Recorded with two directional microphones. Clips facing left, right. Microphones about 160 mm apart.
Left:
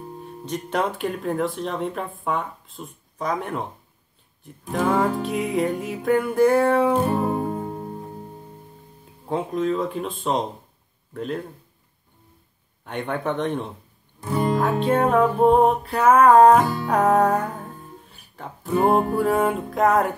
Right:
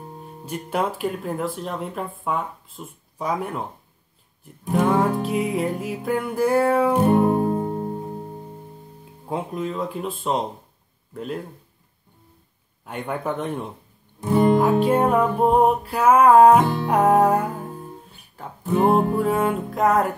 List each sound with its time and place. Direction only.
0.5 s speech: 5° right (ahead or behind)
4.6 s music: 25° right (ahead or behind)
5.2 s speech: centre (ahead or behind)
7.0 s music: 20° right (ahead or behind)
7.4 s music: 30° right (ahead or behind)
9.3 s speech: 5° right (ahead or behind)
12.8 s speech: 5° right (ahead or behind)
14.6 s music: 10° right (ahead or behind)
18.3 s speech: centre (ahead or behind)